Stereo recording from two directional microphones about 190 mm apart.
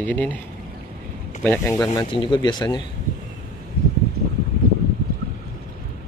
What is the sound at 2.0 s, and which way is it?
Speech, 25° left (ahead or behind).